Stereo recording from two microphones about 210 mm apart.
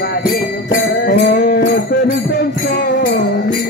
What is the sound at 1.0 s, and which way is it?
Music, 50° left (ahead or behind).